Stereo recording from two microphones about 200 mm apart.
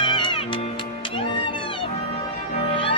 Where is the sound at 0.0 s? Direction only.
25° left (ahead or behind).